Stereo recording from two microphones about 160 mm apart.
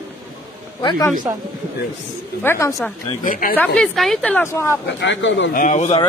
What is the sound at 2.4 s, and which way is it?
Speech, 15° left (ahead or behind).